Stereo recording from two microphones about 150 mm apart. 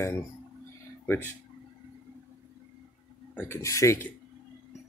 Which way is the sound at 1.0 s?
15° left (ahead or behind).